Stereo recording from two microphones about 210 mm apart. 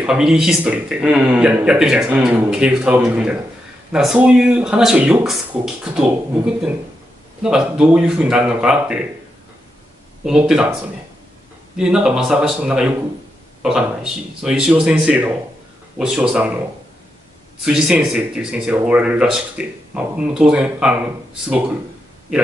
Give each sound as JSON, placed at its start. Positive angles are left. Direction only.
{"t": 0.0, "sound": "a man's voice", "side_deg": -5}
{"t": 10.2, "sound": "a man's voice", "side_deg": -5}
{"t": 17.6, "sound": "a man's voice", "side_deg": -5}